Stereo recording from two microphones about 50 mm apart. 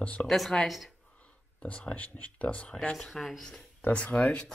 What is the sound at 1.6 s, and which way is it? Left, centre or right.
Speech, left.